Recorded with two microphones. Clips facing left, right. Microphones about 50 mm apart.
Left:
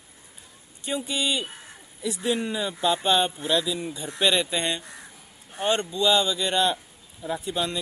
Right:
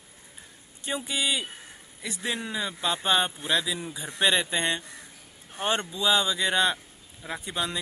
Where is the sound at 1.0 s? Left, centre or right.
Centre.